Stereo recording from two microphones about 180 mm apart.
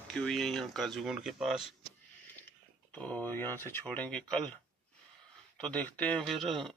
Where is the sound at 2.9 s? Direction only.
5° left (ahead or behind).